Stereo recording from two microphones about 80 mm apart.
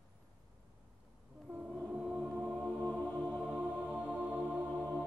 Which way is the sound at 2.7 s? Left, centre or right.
Centre.